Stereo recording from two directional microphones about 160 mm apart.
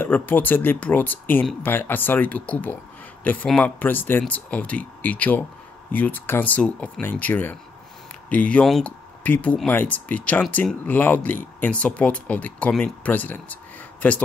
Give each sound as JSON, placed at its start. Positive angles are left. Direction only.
{"t": 0.0, "sound": "speech", "side_deg": 10}